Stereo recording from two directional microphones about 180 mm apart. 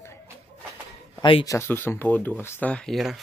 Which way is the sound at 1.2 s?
25° left (ahead or behind).